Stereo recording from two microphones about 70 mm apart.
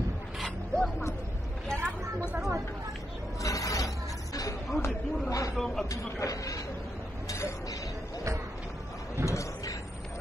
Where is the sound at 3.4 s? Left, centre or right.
Left.